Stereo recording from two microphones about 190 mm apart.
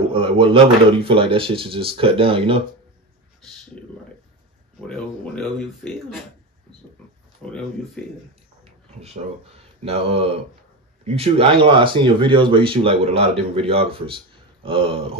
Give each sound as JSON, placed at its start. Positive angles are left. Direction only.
{"t": 0.1, "sound": "speech", "side_deg": -25}
{"t": 4.7, "sound": "speech", "side_deg": 5}
{"t": 8.0, "sound": "a man's voice", "side_deg": 5}
{"t": 9.8, "sound": "speech", "side_deg": -30}